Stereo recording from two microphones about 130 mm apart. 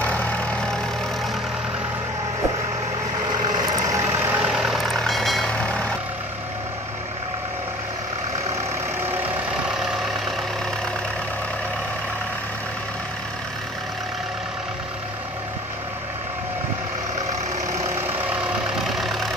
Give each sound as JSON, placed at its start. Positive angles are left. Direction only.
{"t": 0.0, "sound": "vehicle", "side_deg": 10}
{"t": 3.4, "sound": "vehicle", "side_deg": -30}
{"t": 4.5, "sound": "vehicle", "side_deg": -5}
{"t": 9.0, "sound": "vehicle", "side_deg": -15}
{"t": 9.7, "sound": "vehicle", "side_deg": -5}
{"t": 18.9, "sound": "vehicle", "side_deg": 0}